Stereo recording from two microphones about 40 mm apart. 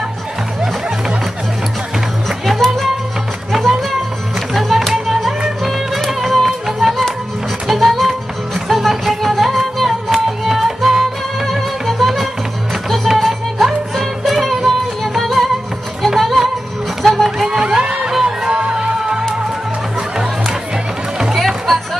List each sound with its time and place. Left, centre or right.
2.2 s music: centre
4.6 s music: centre
11.4 s music: centre
17.5 s a sound: right
18.1 s music: centre
21.4 s music: centre